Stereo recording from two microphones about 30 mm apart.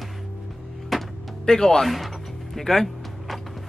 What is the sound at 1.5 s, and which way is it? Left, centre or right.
Speech, centre.